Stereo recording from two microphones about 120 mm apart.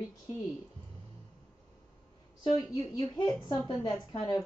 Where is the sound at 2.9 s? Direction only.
40° left (ahead or behind).